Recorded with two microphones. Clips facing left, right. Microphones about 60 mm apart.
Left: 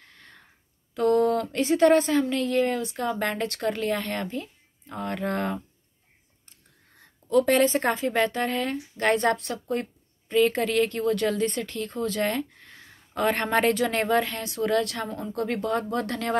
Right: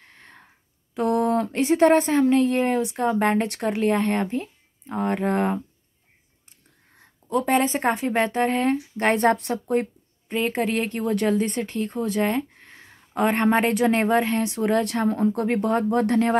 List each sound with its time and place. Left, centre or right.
0.0 s a sound: right
0.9 s speech: right
7.2 s speech: centre
15.0 s speech: right